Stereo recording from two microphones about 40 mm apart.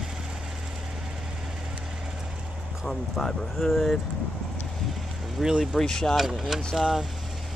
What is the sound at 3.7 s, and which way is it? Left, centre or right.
Speech, centre.